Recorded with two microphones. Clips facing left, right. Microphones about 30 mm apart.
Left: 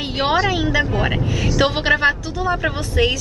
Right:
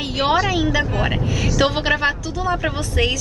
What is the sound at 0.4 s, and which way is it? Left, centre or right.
Speech, left.